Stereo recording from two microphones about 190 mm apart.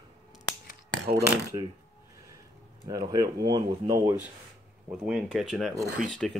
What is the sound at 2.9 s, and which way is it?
Speech, 20° right (ahead or behind).